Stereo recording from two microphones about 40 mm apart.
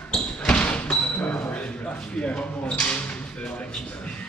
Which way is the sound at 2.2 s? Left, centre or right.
Left.